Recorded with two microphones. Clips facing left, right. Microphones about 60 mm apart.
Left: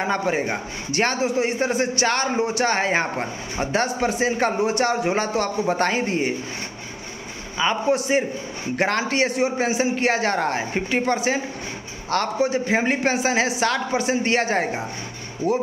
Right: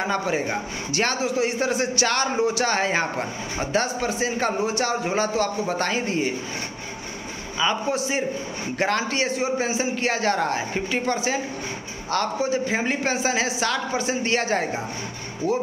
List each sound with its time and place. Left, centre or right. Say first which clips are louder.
0.0 s a man's voice: left 2 dB; left
7.6 s a man's voice: left 1 dB; left
7.9 s a man's voice: left 4 dB; left